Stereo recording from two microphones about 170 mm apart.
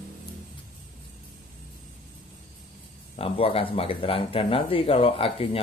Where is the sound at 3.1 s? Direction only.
35° left (ahead or behind).